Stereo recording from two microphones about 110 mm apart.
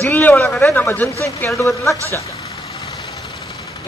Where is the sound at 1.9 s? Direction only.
25° right (ahead or behind).